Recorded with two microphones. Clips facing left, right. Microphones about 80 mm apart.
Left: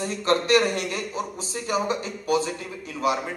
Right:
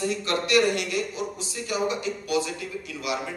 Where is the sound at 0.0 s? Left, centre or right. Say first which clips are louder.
Left 3 dB; left.